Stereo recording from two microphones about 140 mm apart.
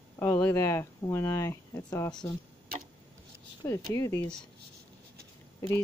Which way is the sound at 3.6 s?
25° left (ahead or behind).